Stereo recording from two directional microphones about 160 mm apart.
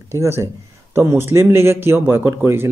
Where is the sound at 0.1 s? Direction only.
15° right (ahead or behind).